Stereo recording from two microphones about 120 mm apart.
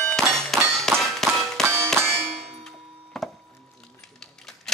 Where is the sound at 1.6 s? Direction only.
20° right (ahead or behind).